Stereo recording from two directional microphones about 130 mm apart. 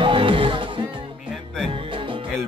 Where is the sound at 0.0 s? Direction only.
40° right (ahead or behind).